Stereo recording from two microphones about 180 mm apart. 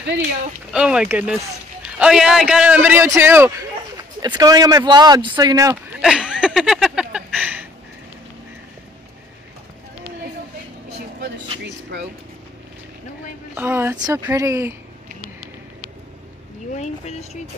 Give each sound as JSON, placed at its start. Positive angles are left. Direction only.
{"t": 0.7, "sound": "a man's voice", "side_deg": -5}
{"t": 5.9, "sound": "a sound", "side_deg": -5}
{"t": 11.6, "sound": "speech", "side_deg": -70}
{"t": 13.6, "sound": "a man's voice", "side_deg": -10}
{"t": 16.7, "sound": "speech", "side_deg": 40}